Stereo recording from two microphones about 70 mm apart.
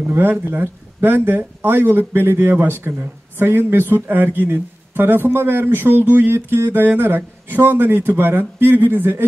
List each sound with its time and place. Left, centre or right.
0.1 s speech: right